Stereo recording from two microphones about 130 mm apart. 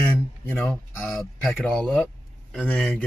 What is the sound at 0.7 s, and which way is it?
A man's voice, centre (ahead or behind).